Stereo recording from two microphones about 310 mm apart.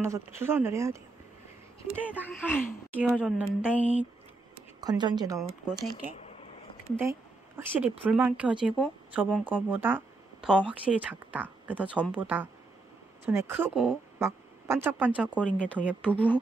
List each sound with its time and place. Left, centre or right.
0.0 s speech: centre
2.2 s speech: centre
5.4 s speech: centre
5.9 s a sound: left
7.0 s speech: centre